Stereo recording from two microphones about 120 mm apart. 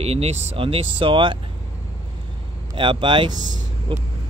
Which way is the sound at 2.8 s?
45° right (ahead or behind).